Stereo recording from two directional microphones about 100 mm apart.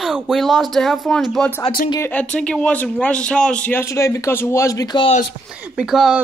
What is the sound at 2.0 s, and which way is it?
Speech, 15° left (ahead or behind).